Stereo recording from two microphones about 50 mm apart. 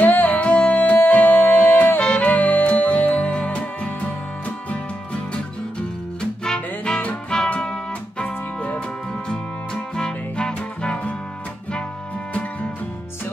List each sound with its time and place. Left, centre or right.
0.0 s music: left
2.0 s music: left